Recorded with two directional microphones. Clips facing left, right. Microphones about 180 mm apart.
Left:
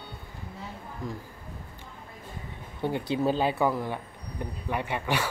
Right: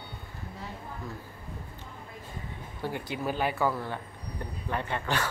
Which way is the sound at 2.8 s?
25° left (ahead or behind).